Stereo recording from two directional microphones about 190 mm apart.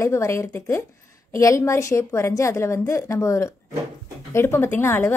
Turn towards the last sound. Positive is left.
turn(degrees=10)  # may be behind; listen again after turning